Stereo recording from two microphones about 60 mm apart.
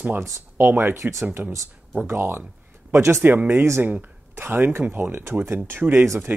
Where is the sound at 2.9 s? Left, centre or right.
Right.